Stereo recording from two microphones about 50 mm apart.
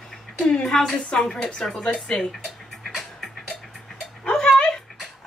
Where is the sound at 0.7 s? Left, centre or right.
Centre.